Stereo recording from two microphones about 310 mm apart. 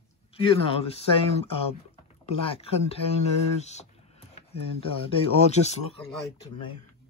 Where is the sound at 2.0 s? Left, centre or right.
Centre.